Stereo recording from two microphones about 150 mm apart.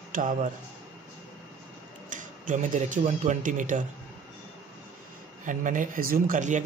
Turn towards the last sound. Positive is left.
turn(degrees=-55)  # may be behind; listen again after turning